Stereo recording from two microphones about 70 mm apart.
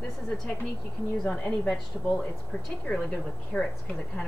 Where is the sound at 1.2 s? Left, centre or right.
Centre.